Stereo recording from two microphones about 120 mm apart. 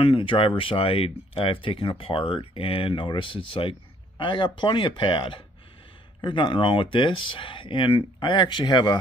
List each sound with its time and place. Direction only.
0.0 s speech: 45° left (ahead or behind)